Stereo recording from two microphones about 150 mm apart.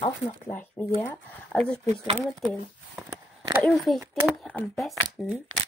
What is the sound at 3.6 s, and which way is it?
Speech, 5° left (ahead or behind).